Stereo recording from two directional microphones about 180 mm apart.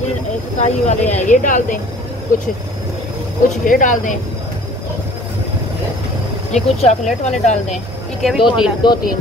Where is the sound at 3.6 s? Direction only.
45° left (ahead or behind).